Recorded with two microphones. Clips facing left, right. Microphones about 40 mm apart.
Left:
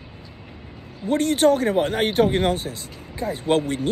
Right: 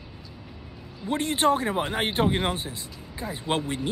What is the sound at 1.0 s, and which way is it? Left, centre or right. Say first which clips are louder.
Speech: left 5 dB; right.